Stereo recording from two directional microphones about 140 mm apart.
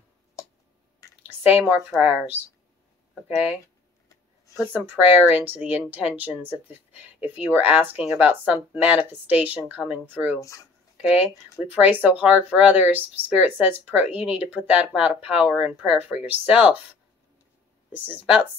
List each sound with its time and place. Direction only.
1.4 s speech: 10° right (ahead or behind)
4.7 s speech: 15° right (ahead or behind)
10.4 s speech: 20° left (ahead or behind)
11.0 s speech: 5° right (ahead or behind)